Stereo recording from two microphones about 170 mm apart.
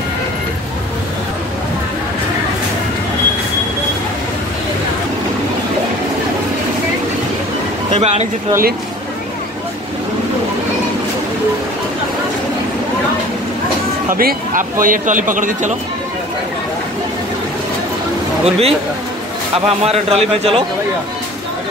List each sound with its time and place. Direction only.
7.9 s speech: 40° right (ahead or behind)
14.0 s speech: 55° right (ahead or behind)
18.4 s a man's voice: 35° right (ahead or behind)